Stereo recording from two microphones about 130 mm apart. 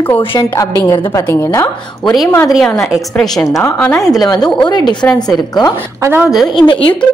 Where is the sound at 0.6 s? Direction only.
25° left (ahead or behind).